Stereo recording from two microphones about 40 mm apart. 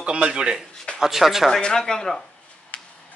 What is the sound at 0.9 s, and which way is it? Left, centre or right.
Speech, centre.